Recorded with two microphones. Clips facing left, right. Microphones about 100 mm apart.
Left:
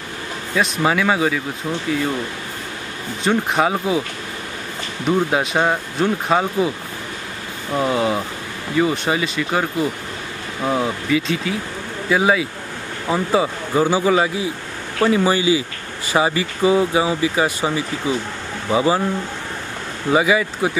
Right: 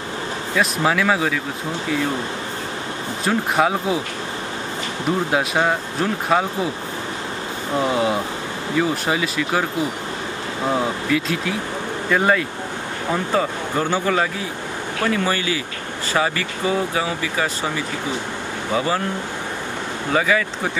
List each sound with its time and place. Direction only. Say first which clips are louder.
0.6 s speech: left 1 dB; centre (ahead or behind)
3.3 s speech: left 1 dB; centre (ahead or behind)
5.3 s speech: left 1 dB; centre (ahead or behind)
7.8 s speech: left 1 dB; centre (ahead or behind); by 18.9 s 15° left (ahead or behind)
20.1 s speech: left 3 dB; 15° left (ahead or behind)